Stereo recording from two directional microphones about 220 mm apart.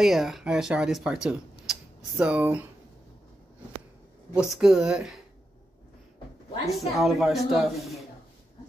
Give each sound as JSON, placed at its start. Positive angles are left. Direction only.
{"t": 0.0, "sound": "speech", "side_deg": 0}
{"t": 4.3, "sound": "speech", "side_deg": -5}
{"t": 6.7, "sound": "speech", "side_deg": 0}